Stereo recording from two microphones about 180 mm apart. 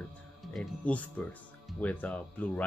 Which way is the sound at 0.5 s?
5° left (ahead or behind).